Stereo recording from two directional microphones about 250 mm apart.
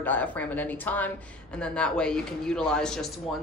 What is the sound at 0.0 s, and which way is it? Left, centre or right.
A woman's voice, centre.